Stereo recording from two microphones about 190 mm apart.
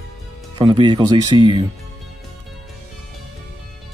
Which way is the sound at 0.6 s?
25° right (ahead or behind).